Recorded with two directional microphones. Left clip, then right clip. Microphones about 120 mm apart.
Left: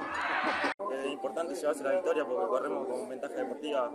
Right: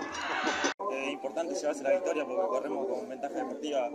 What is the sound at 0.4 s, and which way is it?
Music, 10° left (ahead or behind).